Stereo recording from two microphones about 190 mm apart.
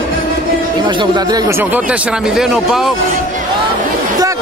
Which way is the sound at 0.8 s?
25° right (ahead or behind).